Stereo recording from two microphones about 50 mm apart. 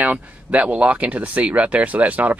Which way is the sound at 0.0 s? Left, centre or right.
Right.